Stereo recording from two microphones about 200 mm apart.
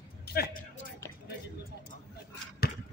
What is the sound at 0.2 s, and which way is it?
Speech, 50° left (ahead or behind).